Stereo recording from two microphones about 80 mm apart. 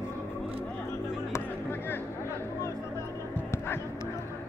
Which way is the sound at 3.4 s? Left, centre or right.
Left.